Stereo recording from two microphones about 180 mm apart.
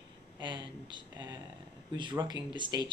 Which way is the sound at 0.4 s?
25° right (ahead or behind).